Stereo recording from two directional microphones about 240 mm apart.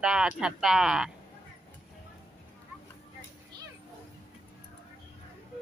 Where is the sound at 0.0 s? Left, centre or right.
Centre.